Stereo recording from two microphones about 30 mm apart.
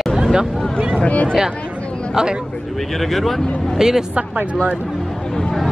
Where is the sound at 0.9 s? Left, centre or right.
Left.